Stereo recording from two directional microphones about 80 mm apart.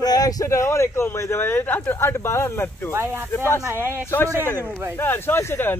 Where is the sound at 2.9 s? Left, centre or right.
Right.